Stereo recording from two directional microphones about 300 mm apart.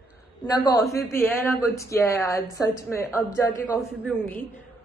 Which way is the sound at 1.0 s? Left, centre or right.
Centre.